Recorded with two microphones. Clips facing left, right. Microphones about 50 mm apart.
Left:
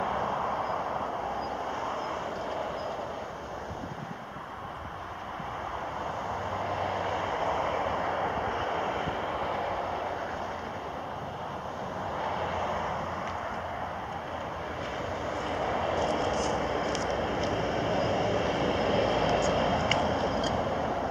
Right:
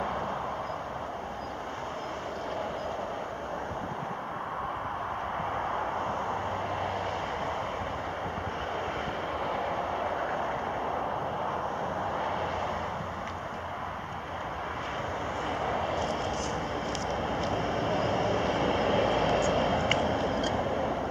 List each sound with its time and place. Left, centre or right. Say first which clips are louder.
6.8 s vehicle: left 1 dB; centre
7.6 s vehicle: left 4 dB; left
9.4 s vehicle: even; centre
12.2 s vehicle: even; centre
15.6 s vehicle: left 3 dB; centre